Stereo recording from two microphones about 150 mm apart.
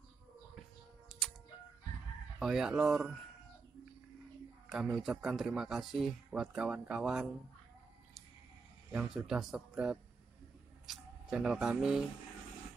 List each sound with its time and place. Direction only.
2.3 s speech: 5° right (ahead or behind)
4.6 s speech: 5° right (ahead or behind)
8.9 s speech: 5° right (ahead or behind)